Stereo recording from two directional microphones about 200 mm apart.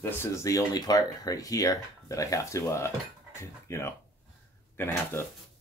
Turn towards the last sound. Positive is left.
turn(degrees=10)  # may be behind; listen again after turning